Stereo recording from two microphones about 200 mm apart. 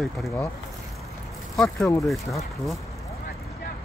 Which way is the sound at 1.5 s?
5° left (ahead or behind).